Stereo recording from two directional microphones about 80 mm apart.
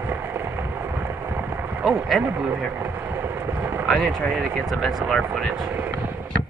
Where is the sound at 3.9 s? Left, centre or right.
Centre.